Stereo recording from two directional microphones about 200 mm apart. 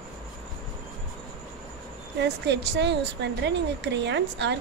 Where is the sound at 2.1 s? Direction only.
60° right (ahead or behind).